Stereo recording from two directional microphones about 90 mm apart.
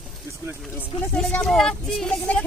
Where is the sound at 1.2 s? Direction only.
15° left (ahead or behind).